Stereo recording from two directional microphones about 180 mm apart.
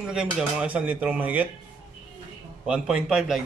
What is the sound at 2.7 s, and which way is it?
Speech, 5° right (ahead or behind).